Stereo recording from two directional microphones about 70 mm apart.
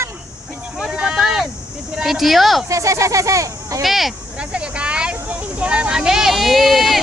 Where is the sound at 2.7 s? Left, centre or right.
Right.